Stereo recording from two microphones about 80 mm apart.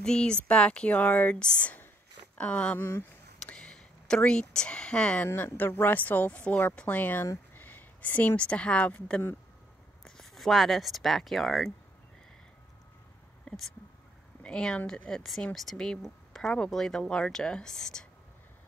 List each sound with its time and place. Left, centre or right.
0.0 s speech: centre
5.3 s a woman's voice: left
10.0 s speech: centre
13.5 s a sound: centre
14.4 s speech: centre